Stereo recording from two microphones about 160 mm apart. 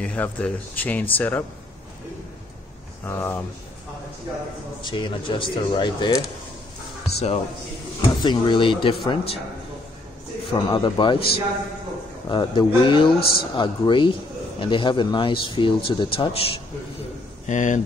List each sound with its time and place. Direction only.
0.0 s speech: 10° left (ahead or behind)
3.1 s speech: 15° left (ahead or behind)
4.8 s speech: 30° left (ahead or behind)
8.0 s speech: 30° left (ahead or behind)
10.5 s speech: 30° left (ahead or behind)
13.2 s a man's voice: 70° left (ahead or behind)
13.6 s speech: 30° left (ahead or behind)
17.5 s speech: 50° left (ahead or behind)